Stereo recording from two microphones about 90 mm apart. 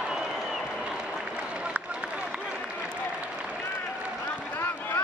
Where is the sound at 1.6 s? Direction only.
15° right (ahead or behind).